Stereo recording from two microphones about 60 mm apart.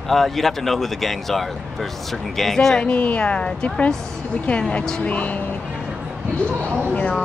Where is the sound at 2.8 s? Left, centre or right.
Left.